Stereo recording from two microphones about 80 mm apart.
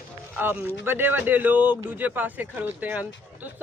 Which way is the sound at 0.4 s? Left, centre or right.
Right.